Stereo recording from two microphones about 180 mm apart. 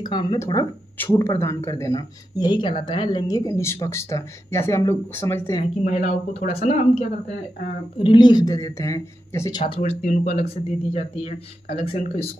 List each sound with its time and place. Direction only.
0.0 s speech: 25° left (ahead or behind)
5.9 s speech: 40° left (ahead or behind)
8.0 s speech: 25° left (ahead or behind)
9.8 s speech: 40° left (ahead or behind)